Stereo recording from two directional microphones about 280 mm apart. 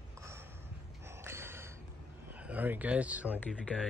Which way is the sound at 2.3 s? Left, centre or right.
Centre.